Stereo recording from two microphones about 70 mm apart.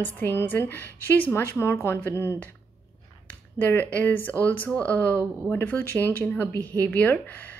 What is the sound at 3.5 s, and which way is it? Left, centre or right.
A woman's voice, left.